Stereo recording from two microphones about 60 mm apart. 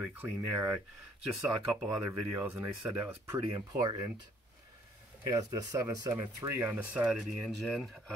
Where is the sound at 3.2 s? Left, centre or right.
Right.